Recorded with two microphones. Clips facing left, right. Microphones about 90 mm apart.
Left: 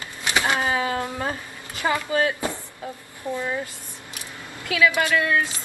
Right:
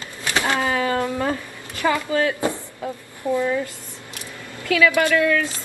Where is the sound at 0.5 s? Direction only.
20° left (ahead or behind).